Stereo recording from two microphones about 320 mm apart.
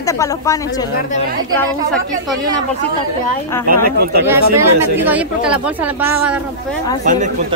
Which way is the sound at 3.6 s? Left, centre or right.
Right.